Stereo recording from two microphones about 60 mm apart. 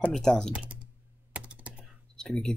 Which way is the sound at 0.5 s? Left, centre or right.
Centre.